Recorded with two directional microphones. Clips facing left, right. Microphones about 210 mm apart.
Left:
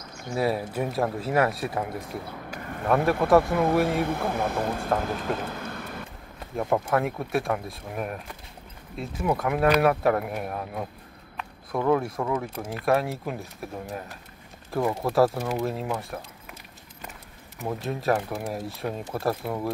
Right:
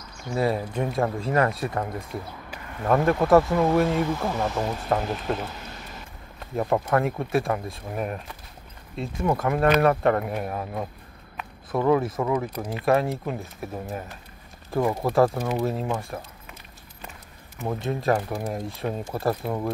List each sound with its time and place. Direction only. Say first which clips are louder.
0.4 s speech: right 1 dB; 5° left (ahead or behind)
2.9 s speech: right 2 dB; centre (ahead or behind)
4.0 s speech: right 1 dB; 60° left (ahead or behind)
5.5 s vehicle: left 5 dB; 55° left (ahead or behind)
6.5 s speech: right 1 dB; centre (ahead or behind)
17.6 s speech: right 2 dB; centre (ahead or behind)